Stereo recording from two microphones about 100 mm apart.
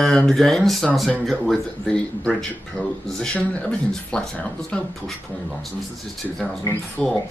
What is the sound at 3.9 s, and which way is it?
Speech, 5° left (ahead or behind).